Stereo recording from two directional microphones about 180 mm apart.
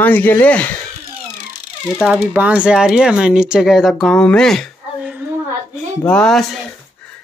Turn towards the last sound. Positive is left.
turn(degrees=5)  # may be behind; listen again after turning